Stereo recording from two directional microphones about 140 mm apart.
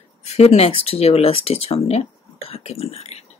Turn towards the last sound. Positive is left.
turn(degrees=45)  # may be behind; listen again after turning